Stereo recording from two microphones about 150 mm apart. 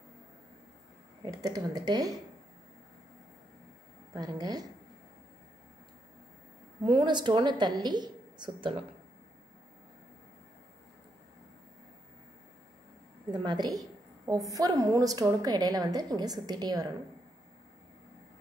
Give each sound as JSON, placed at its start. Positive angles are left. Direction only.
{"t": 1.2, "sound": "a woman's voice", "side_deg": -25}
{"t": 4.1, "sound": "a woman's voice", "side_deg": -25}
{"t": 6.8, "sound": "a woman's voice", "side_deg": -30}
{"t": 13.3, "sound": "a woman's voice", "side_deg": -30}